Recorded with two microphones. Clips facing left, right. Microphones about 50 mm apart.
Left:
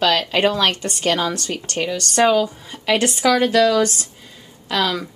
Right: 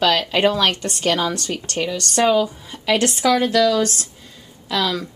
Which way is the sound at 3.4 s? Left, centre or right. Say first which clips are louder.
Left 3 dB; left.